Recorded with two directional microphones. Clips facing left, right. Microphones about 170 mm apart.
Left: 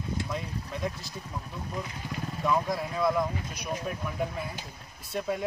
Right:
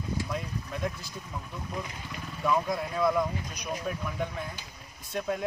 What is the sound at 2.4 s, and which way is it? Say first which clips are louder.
Speech: even; centre (ahead or behind).